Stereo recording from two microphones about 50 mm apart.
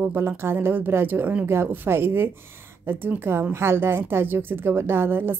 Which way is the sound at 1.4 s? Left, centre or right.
Right.